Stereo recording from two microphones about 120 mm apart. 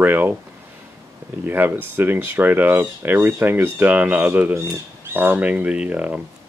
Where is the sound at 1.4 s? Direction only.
15° right (ahead or behind).